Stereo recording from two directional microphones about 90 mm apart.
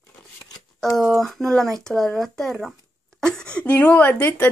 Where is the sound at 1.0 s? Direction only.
Centre (ahead or behind); by 4.5 s 20° left (ahead or behind).